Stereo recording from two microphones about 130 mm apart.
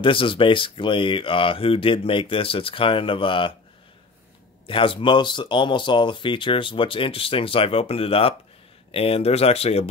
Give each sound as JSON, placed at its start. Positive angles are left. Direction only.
{"t": 0.0, "sound": "speech", "side_deg": 40}
{"t": 4.6, "sound": "speech", "side_deg": 45}